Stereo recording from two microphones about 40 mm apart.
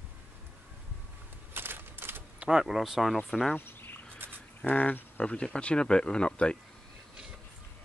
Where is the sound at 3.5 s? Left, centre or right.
Left.